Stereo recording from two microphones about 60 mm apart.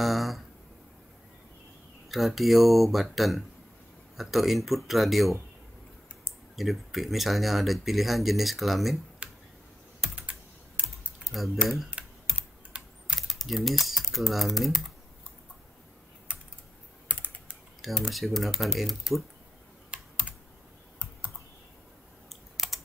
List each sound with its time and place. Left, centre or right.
0.0 s speech: centre
2.0 s speech: centre
6.5 s speech: centre
9.2 s tick-tock: right
11.2 s speech: centre
12.0 s typing: centre
13.3 s typing: centre
13.7 s speech: centre
17.8 s speech: centre
22.3 s computer keyboard: centre